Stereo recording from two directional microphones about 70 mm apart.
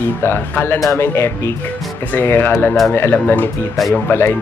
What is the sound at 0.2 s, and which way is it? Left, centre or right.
Speech, left.